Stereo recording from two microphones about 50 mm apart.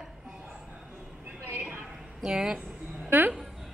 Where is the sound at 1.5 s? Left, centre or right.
Right.